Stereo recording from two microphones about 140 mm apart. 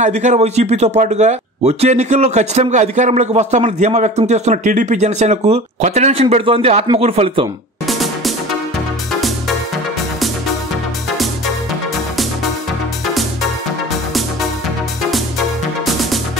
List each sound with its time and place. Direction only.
0.0 s speech: 55° right (ahead or behind)
7.8 s music: centre (ahead or behind)
15.0 s music: centre (ahead or behind)